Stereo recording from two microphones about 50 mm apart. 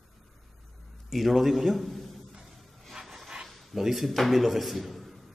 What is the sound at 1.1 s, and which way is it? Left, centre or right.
A man's voice, centre.